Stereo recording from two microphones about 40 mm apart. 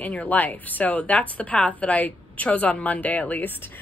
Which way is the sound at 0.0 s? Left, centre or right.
Left.